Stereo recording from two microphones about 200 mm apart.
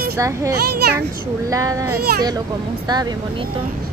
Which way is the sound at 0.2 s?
15° right (ahead or behind).